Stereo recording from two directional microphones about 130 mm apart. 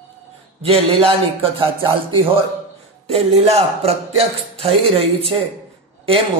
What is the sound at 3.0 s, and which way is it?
Speech, 50° right (ahead or behind).